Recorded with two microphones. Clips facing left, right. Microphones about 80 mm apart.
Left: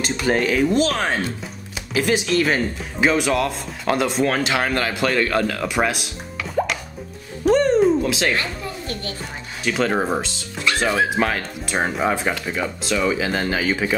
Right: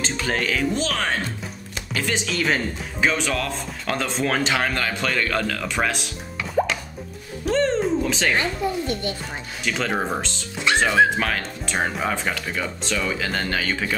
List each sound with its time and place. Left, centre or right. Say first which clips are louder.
0.0 s speech: left 5 dB; centre
6.6 s plop: even; centre
7.5 s a sound: left 4 dB; centre
7.8 s music: left 5 dB; centre
8.4 s speech: right 4 dB; centre
9.7 s speech: left 4 dB; centre